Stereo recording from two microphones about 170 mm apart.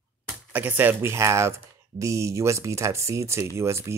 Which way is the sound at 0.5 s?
10° right (ahead or behind).